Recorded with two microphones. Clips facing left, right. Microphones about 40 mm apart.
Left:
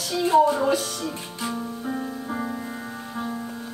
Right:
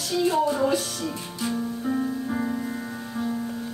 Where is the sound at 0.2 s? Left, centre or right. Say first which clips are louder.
Left 4 dB; centre.